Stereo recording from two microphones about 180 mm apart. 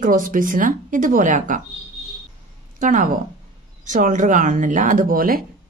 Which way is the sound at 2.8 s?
45° right (ahead or behind).